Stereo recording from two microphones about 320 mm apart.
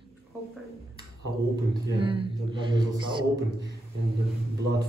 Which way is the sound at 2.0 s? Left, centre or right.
Centre.